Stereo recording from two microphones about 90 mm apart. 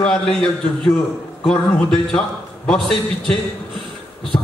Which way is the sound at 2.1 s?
10° left (ahead or behind).